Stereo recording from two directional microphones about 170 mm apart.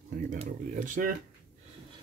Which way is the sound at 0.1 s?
50° right (ahead or behind).